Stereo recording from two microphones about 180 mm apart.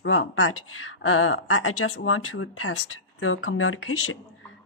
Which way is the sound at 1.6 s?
90° left.